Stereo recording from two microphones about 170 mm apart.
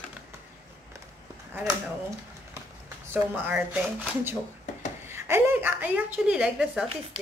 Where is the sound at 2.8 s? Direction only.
10° right (ahead or behind).